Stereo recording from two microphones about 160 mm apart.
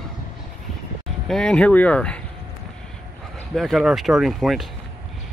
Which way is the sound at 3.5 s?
Centre (ahead or behind).